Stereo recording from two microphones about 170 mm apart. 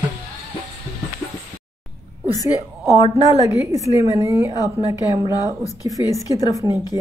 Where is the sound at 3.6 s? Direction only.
20° right (ahead or behind).